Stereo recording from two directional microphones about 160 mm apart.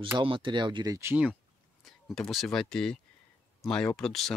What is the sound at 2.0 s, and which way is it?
Speech, centre (ahead or behind).